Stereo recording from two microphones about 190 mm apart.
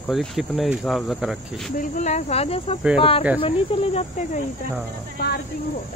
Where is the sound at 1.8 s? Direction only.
40° left (ahead or behind).